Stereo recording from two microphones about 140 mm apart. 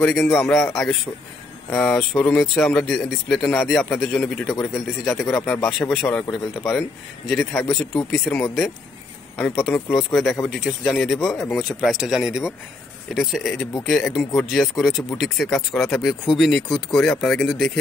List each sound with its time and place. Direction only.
0.0 s speech: centre (ahead or behind)
1.7 s speech: 5° left (ahead or behind)
5.4 s speech: 20° left (ahead or behind)
5.7 s speech: centre (ahead or behind)